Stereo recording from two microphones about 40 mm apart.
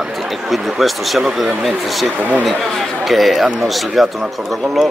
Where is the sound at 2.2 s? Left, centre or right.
Right.